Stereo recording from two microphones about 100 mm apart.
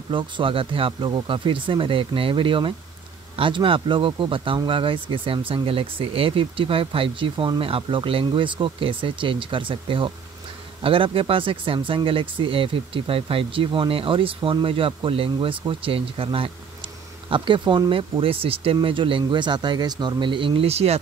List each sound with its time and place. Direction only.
0.1 s speech: 60° right (ahead or behind); by 21.0 s 90° right